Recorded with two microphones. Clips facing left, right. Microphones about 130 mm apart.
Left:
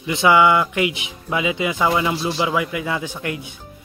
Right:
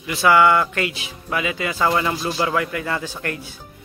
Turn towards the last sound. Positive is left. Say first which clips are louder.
# left 1 dB
turn(degrees=15)  # may be behind; listen again after turning